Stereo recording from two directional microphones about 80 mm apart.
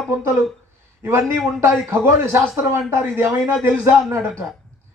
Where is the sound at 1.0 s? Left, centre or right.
Right.